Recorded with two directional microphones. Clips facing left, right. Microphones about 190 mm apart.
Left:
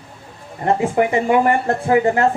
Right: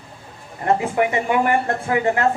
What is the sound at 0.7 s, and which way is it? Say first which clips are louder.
Speech: left 3 dB; 30° left (ahead or behind).